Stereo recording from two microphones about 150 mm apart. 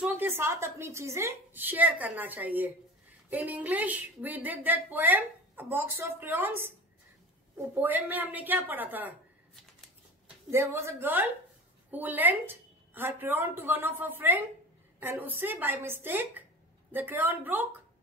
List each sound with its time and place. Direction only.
0.0 s speech: 10° right (ahead or behind)
10.2 s a woman's voice: 15° right (ahead or behind)